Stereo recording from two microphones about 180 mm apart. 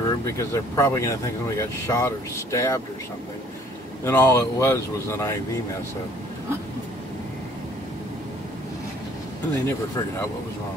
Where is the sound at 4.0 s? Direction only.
15° left (ahead or behind).